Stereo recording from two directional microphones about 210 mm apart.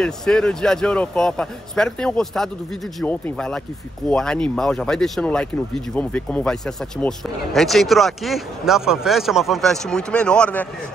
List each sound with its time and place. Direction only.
0.0 s speech: 5° left (ahead or behind)